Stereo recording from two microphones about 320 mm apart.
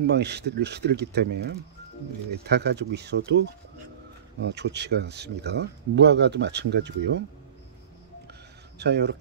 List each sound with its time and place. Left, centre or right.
0.0 s speech: right
4.5 s speech: right
8.3 s a sound: right